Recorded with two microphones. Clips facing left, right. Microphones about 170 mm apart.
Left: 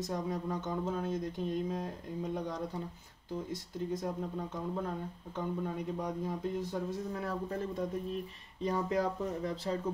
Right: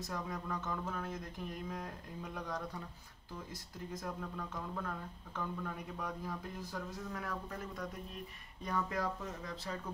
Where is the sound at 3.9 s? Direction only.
25° left (ahead or behind).